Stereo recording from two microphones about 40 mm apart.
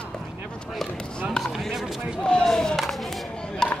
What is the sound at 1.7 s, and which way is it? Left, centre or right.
Basketball bounce, centre.